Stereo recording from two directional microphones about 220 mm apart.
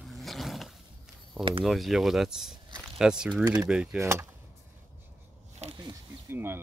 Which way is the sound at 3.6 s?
5° right (ahead or behind).